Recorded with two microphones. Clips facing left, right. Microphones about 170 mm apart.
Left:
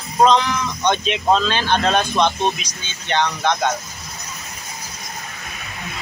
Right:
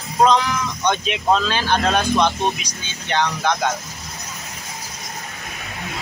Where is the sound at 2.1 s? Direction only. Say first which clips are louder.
Even; 20° left (ahead or behind).